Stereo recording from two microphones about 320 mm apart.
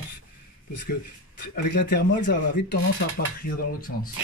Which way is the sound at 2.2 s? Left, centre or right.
Left.